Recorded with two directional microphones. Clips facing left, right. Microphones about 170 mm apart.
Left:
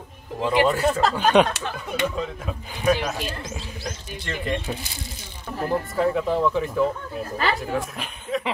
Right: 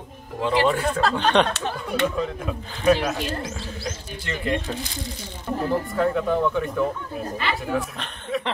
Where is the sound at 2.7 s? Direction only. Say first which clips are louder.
Right 2 dB; 10° left (ahead or behind).